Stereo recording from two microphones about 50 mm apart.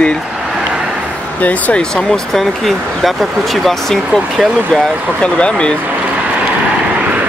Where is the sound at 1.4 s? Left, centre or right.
Left.